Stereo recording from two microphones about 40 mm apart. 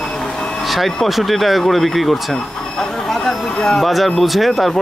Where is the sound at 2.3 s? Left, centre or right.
Centre.